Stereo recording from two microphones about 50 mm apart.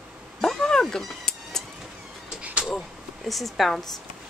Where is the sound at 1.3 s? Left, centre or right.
Centre.